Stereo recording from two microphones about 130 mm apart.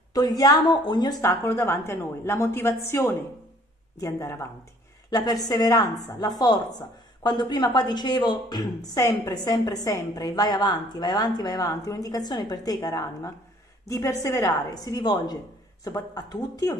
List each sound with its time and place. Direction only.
0.1 s a woman's voice: 30° left (ahead or behind)
1.2 s a woman's voice: 20° left (ahead or behind)